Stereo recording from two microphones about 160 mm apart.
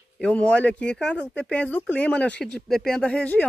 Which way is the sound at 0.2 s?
10° left (ahead or behind).